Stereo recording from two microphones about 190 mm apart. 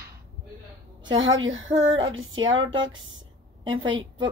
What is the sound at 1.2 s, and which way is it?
Speech, 90° right.